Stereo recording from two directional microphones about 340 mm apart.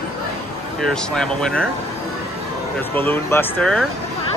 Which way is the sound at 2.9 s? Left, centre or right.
Centre.